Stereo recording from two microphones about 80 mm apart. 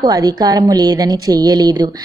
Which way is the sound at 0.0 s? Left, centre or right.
Right.